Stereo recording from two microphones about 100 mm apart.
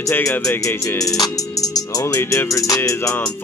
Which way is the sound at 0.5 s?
25° left (ahead or behind).